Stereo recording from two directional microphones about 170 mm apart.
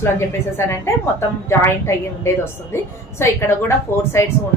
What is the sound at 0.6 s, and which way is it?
A woman's voice, 15° left (ahead or behind).